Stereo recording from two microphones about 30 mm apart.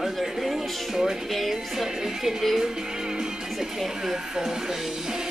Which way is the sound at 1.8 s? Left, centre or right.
Centre.